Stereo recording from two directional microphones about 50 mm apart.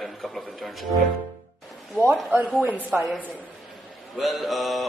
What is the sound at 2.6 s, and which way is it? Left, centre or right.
Speech, right.